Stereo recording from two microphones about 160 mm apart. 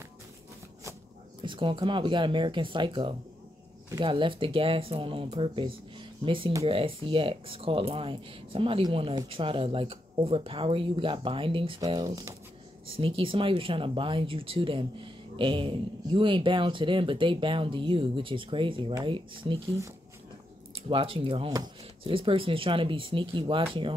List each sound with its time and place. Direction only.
1.4 s speech: 30° right (ahead or behind)
12.8 s speech: 35° right (ahead or behind)
20.7 s speech: 35° right (ahead or behind)